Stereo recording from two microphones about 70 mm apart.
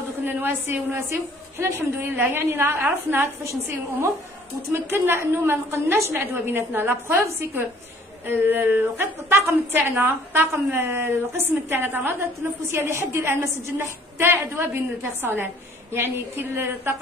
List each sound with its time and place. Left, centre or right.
0.2 s a woman's voice: right
4.9 s a woman's voice: right